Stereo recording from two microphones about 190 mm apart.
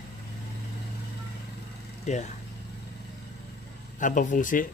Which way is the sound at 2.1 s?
40° left (ahead or behind).